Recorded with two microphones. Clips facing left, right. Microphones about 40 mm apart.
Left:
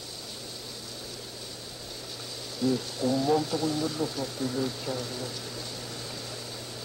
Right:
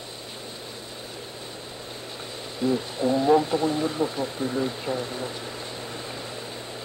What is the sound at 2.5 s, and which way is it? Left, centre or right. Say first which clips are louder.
Speech: right 3 dB; right.